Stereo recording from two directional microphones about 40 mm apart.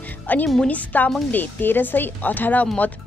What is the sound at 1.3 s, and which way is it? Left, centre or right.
A woman's voice, left.